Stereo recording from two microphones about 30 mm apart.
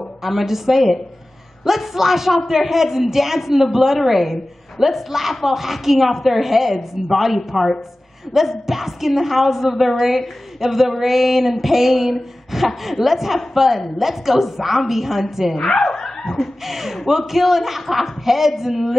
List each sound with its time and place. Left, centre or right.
0.2 s a woman's voice: centre
15.6 s speech: centre
16.6 s a woman's voice: centre